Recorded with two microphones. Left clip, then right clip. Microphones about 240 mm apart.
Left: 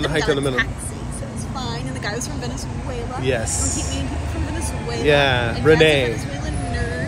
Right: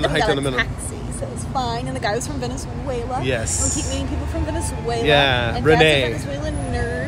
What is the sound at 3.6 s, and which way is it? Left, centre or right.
Speech, centre.